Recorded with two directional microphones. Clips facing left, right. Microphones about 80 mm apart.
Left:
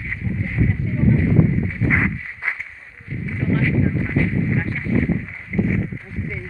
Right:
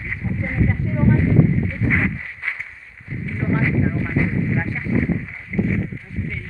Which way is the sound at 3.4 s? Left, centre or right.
Right.